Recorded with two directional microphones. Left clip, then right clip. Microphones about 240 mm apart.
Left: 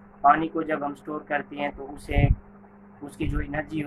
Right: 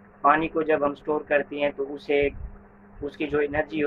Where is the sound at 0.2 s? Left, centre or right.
Centre.